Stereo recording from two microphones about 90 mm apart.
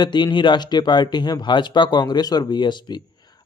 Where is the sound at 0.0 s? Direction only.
55° left (ahead or behind).